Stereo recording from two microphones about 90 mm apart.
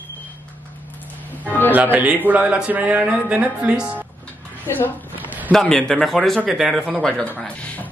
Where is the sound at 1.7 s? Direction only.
20° right (ahead or behind).